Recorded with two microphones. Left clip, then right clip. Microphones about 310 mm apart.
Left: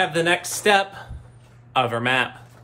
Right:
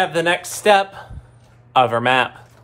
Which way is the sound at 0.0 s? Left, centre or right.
Centre.